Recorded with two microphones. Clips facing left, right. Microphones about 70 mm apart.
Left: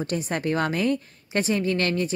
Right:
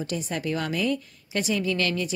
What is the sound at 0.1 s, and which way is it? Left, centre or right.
A woman's voice, left.